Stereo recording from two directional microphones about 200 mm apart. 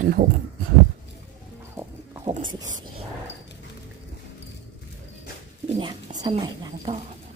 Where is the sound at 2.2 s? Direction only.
25° right (ahead or behind).